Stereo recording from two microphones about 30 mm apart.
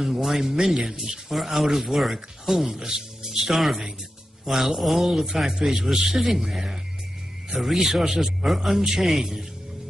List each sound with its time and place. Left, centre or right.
0.2 s a man's voice: centre
1.3 s a man's voice: centre